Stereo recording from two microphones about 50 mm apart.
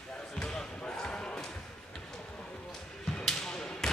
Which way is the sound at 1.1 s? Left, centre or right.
Centre.